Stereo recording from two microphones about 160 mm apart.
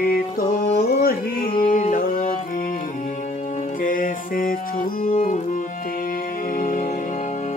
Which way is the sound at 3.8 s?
60° left (ahead or behind).